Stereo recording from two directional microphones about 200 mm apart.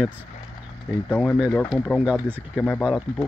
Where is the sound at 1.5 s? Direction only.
Centre (ahead or behind).